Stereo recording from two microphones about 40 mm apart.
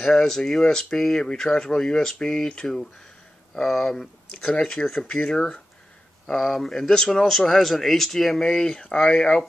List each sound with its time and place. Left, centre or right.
0.0 s speech: centre
3.6 s speech: centre
4.6 s speech: centre